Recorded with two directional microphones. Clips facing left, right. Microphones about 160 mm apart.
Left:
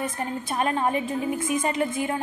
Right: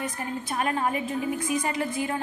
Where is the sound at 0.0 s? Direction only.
25° left (ahead or behind).